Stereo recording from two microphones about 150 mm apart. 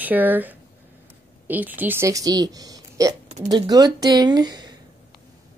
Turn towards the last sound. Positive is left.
turn(degrees=-25)  # may be behind; listen again after turning